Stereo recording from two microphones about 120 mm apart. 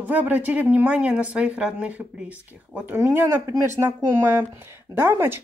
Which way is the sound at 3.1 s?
20° right (ahead or behind).